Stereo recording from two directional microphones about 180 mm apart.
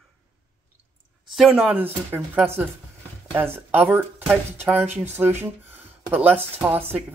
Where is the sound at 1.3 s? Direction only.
Centre (ahead or behind).